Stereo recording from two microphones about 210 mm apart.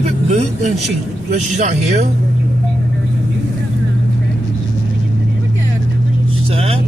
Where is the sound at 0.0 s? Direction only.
30° right (ahead or behind).